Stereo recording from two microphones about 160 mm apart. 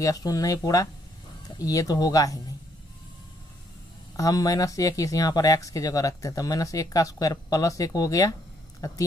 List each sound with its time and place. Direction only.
0.0 s speech: 20° left (ahead or behind)
4.2 s speech: 20° left (ahead or behind)